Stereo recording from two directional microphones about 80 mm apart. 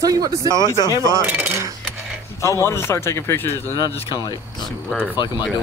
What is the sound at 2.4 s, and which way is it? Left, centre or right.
Speech, left.